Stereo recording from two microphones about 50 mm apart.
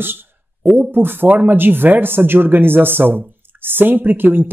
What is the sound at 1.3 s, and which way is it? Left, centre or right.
Speech, right.